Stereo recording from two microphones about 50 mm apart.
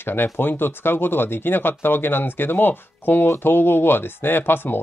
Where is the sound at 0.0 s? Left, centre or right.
Left.